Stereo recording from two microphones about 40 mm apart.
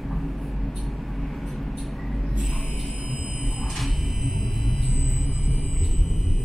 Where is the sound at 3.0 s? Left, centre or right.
Right.